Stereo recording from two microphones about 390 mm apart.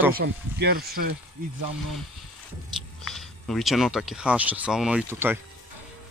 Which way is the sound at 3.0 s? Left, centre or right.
Centre.